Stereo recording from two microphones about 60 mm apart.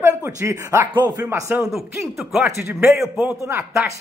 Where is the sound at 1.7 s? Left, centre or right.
Centre.